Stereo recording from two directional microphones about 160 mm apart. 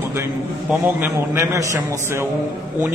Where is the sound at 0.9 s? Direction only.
15° right (ahead or behind).